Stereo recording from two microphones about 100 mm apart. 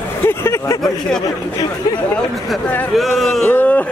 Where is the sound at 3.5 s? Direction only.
20° left (ahead or behind).